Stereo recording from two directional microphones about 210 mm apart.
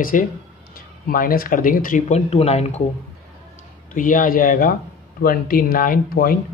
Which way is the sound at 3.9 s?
40° left (ahead or behind).